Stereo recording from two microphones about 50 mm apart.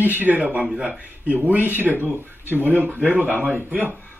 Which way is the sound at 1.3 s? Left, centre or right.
Right.